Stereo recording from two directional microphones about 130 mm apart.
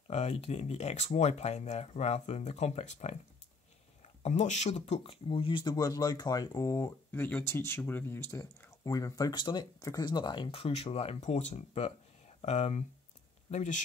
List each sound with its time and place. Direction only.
0.1 s speech: 60° left (ahead or behind)
4.2 s speech: 65° left (ahead or behind); by 7.2 s 25° left (ahead or behind)
7.2 s speech: 15° left (ahead or behind); by 13.7 s 70° left (ahead or behind)